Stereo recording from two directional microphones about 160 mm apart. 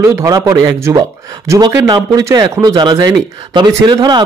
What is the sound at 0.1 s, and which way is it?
Speech, 20° right (ahead or behind).